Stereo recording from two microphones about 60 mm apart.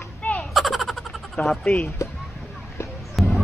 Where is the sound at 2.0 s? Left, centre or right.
Left.